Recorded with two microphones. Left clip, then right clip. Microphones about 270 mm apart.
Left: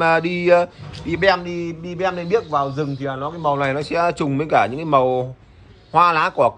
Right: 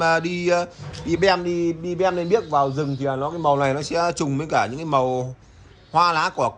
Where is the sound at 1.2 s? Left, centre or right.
Right.